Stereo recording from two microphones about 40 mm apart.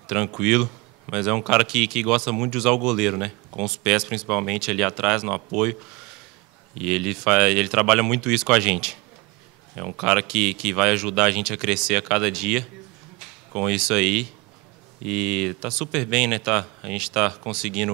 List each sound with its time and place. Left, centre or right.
0.0 s speech: centre